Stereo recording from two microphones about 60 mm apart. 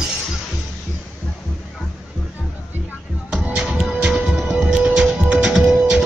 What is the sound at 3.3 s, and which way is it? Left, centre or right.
Music, right.